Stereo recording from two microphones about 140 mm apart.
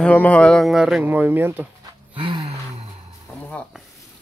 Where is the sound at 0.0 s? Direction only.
10° left (ahead or behind).